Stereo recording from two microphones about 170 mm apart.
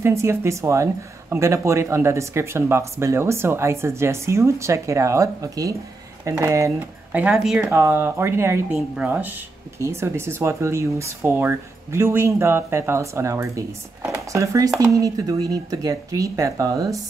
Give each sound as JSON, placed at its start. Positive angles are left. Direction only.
{"t": 0.0, "sound": "speech", "side_deg": -15}